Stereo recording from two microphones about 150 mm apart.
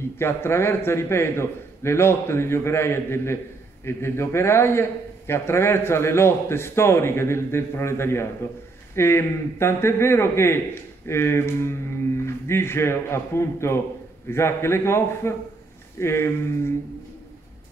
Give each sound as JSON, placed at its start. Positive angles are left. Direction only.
{"t": 0.2, "sound": "a man's voice", "side_deg": 15}